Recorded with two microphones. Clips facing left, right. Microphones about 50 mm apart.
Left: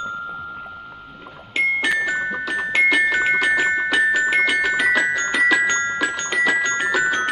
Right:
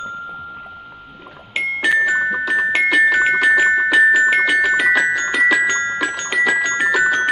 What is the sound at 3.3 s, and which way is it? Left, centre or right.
Music, centre.